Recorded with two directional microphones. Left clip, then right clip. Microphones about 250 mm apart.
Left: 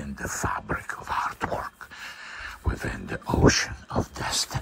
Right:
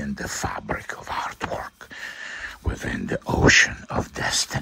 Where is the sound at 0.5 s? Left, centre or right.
Right.